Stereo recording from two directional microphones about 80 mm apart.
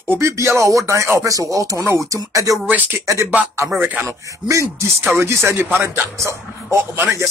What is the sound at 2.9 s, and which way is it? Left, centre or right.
Speech, right.